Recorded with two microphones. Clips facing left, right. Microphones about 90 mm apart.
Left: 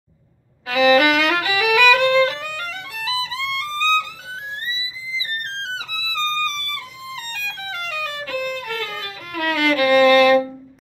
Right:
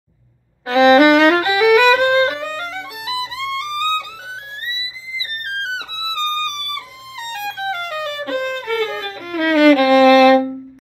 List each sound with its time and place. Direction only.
0.7 s violin: 30° right (ahead or behind)
5.8 s music: 30° right (ahead or behind)
7.4 s music: 30° right (ahead or behind)
8.5 s violin: 40° right (ahead or behind)